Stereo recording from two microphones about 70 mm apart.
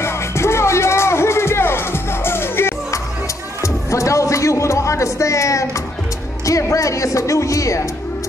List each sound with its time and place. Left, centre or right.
0.0 s music: left
3.6 s music: left
6.4 s speech: left